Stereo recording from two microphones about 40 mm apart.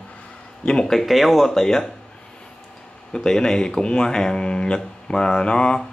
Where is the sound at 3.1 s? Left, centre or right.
Centre.